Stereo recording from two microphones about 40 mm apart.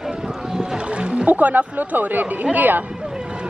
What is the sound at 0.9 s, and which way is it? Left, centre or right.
Speech, right.